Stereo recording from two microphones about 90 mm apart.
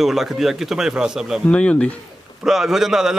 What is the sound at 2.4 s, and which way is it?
Speech, 5° right (ahead or behind).